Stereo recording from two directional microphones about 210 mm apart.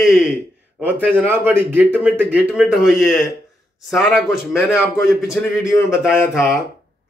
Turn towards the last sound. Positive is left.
turn(degrees=10)  # may be behind; listen again after turning